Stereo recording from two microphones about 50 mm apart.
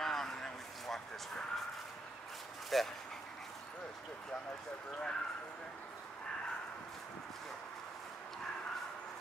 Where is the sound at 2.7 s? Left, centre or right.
Centre.